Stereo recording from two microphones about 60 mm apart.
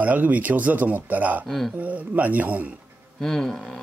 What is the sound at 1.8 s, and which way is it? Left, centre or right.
Speech, right.